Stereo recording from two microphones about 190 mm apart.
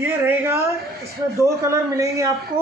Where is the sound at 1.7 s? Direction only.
15° right (ahead or behind).